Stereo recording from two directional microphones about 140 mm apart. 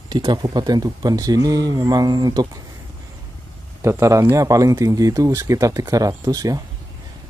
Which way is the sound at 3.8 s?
20° right (ahead or behind).